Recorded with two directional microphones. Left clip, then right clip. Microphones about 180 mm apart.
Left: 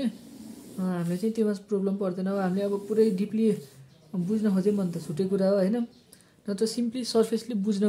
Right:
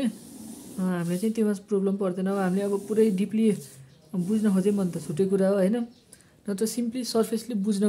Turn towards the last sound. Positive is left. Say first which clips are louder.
# even
turn(degrees=-10)  # may be behind; listen again after turning